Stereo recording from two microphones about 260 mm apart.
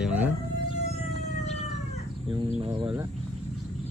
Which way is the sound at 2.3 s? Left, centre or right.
Centre.